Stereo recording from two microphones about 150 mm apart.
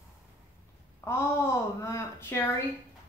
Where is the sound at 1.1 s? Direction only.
15° left (ahead or behind).